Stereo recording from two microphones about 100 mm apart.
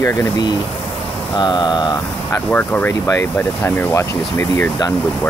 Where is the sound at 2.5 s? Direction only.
15° left (ahead or behind).